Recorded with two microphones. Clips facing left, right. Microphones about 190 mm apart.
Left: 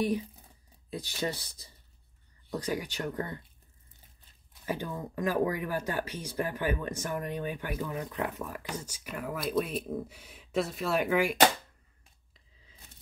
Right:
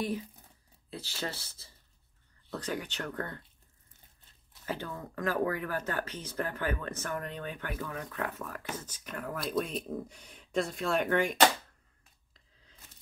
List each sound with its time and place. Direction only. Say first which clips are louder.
0.8 s speech: left 5 dB; 15° left (ahead or behind)
4.6 s speech: left 3 dB; 15° left (ahead or behind)
12.4 s a sound: left 1 dB; 5° left (ahead or behind)